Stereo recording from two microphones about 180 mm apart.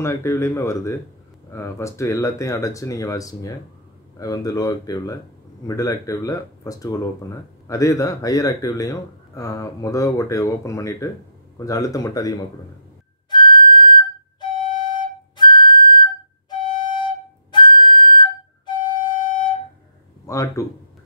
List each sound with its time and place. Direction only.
0.0 s speech: 15° left (ahead or behind)
13.3 s flute: 25° left (ahead or behind)
20.2 s speech: 20° left (ahead or behind)